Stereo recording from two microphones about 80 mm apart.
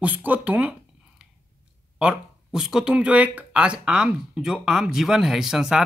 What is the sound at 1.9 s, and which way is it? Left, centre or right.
Speech, centre.